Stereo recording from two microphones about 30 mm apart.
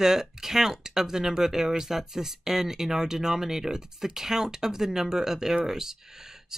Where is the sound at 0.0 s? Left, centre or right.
Centre.